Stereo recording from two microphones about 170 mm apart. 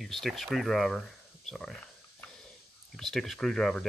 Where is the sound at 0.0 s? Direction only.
Centre (ahead or behind).